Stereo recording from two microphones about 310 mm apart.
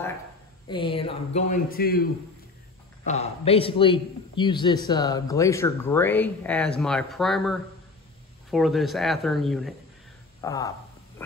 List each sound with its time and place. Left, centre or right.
0.7 s speech: centre
3.1 s a man's voice: centre